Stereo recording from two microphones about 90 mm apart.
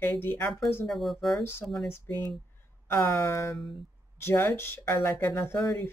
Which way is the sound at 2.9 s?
30° left (ahead or behind).